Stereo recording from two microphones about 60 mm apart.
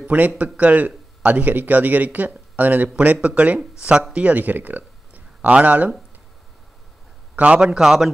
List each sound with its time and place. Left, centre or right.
0.0 s a man's voice: right
7.3 s a man's voice: centre